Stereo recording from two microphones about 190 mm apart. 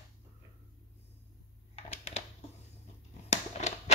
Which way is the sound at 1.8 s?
35° left (ahead or behind).